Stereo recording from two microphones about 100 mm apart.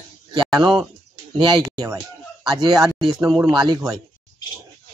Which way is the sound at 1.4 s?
45° right (ahead or behind).